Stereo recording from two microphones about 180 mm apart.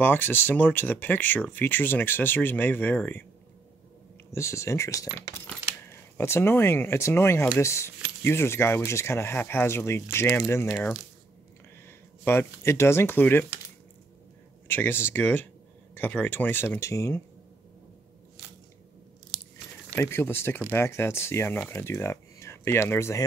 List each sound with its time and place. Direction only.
0.0 s speech: 10° left (ahead or behind)
4.3 s speech: 15° left (ahead or behind)
6.1 s speech: 15° left (ahead or behind)
12.3 s speech: 15° left (ahead or behind)
14.7 s speech: 10° left (ahead or behind)
20.0 s speech: 15° left (ahead or behind)